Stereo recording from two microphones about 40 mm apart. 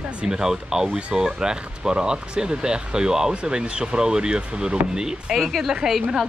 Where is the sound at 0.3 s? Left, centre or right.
Centre.